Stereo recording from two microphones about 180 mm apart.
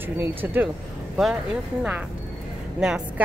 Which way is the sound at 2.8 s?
5° right (ahead or behind).